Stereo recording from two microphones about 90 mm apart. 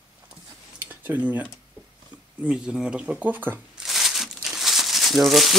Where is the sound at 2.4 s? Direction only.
10° right (ahead or behind).